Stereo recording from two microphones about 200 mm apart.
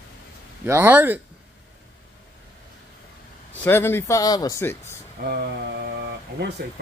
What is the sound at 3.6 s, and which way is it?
Speech, 10° left (ahead or behind).